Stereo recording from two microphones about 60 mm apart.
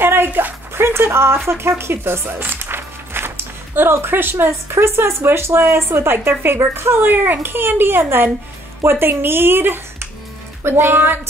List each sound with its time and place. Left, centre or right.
0.0 s a child's voice: right